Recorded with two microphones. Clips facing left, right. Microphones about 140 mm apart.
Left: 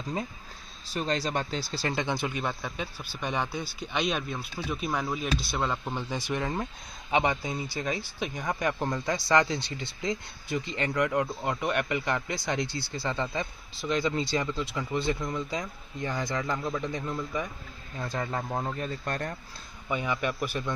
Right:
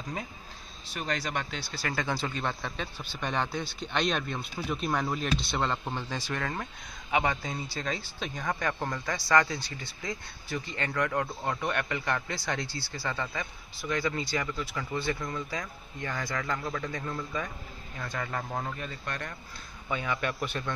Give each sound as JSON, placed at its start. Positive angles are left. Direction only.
{"t": 0.8, "sound": "speech", "side_deg": 35}
{"t": 2.0, "sound": "speech", "side_deg": 20}
{"t": 5.9, "sound": "speech", "side_deg": 15}
{"t": 7.4, "sound": "speech", "side_deg": 15}
{"t": 17.9, "sound": "speech", "side_deg": 25}
{"t": 18.8, "sound": "speech", "side_deg": 35}
{"t": 19.9, "sound": "speech", "side_deg": 15}